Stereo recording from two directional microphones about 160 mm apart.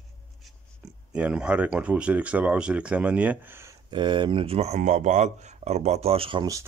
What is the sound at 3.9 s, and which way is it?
Speech, 30° right (ahead or behind).